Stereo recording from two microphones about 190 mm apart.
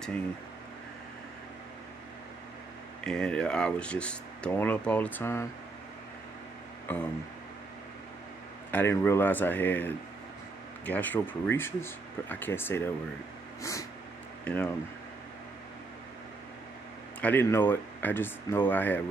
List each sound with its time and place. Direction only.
3.0 s speech: 5° left (ahead or behind)
8.7 s speech: 15° left (ahead or behind)
13.6 s vehicle: 15° left (ahead or behind)
14.4 s speech: 5° left (ahead or behind)
17.2 s speech: 10° left (ahead or behind)